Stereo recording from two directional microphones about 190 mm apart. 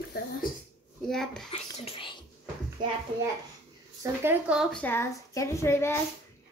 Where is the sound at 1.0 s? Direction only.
Centre (ahead or behind).